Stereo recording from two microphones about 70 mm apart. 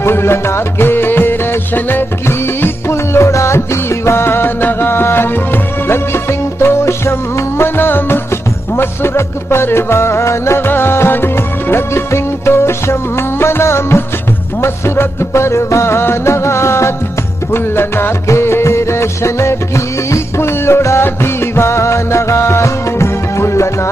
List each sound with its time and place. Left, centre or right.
0.0 s music: left